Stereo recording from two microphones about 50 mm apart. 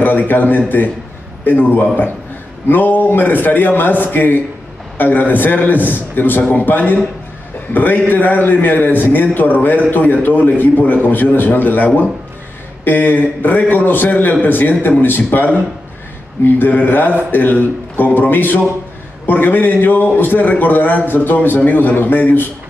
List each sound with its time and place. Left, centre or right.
0.3 s a man's voice: left